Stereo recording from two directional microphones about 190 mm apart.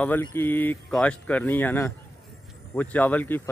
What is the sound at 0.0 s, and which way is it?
Speech, 10° left (ahead or behind).